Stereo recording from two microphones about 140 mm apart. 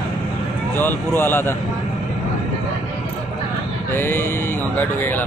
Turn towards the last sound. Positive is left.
turn(degrees=15)  # may be behind; listen again after turning